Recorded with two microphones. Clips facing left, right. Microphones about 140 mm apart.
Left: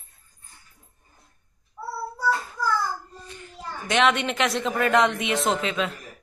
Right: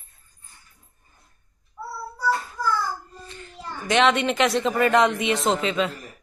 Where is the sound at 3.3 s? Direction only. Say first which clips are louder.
Even; 15° left (ahead or behind).